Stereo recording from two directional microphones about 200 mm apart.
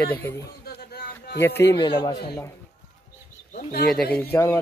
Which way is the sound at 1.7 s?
20° left (ahead or behind).